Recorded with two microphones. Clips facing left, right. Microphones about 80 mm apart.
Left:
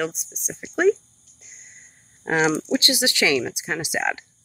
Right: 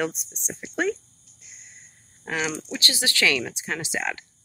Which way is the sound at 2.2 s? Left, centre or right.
Left.